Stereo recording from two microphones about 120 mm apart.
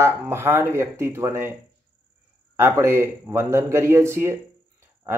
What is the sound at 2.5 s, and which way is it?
Speech, 20° right (ahead or behind).